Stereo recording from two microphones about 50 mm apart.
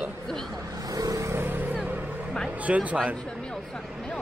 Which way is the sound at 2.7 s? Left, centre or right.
Right.